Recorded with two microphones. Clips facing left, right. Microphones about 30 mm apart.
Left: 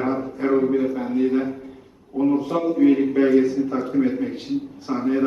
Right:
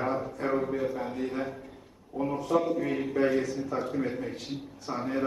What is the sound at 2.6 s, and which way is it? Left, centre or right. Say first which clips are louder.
A man's voice: left 10 dB; left.